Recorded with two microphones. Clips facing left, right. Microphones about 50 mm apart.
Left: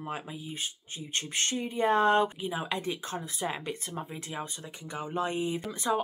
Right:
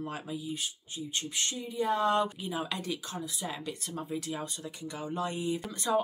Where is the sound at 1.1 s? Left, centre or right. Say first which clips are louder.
Left 4 dB; left.